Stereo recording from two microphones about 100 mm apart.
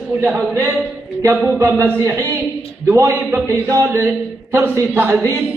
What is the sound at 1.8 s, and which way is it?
Speech, 25° right (ahead or behind).